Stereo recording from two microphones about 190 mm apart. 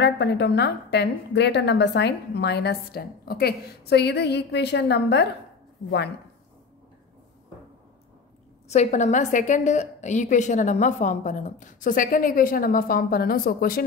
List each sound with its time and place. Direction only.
0.0 s a woman's voice: 65° left (ahead or behind)
8.6 s a woman's voice: 35° left (ahead or behind)